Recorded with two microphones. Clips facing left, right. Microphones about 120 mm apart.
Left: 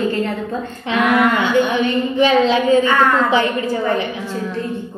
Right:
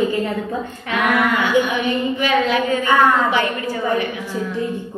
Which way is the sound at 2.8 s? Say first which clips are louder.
Even; 15° right (ahead or behind).